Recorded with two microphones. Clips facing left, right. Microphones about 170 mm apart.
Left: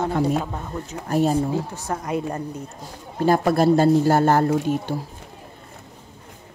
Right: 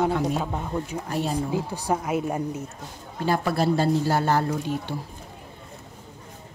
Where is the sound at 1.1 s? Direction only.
45° left (ahead or behind).